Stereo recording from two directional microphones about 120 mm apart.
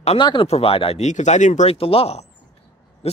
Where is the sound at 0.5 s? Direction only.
55° left (ahead or behind).